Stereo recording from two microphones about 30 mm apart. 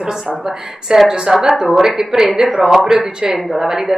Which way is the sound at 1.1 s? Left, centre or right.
Right.